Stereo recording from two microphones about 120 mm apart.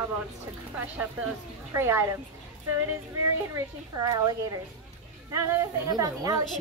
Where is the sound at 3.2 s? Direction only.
30° right (ahead or behind).